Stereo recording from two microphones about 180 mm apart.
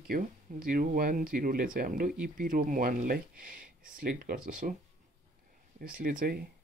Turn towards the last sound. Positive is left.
turn(degrees=-55)  # may be behind; listen again after turning